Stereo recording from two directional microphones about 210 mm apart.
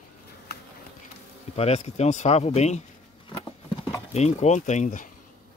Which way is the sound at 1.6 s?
30° left (ahead or behind).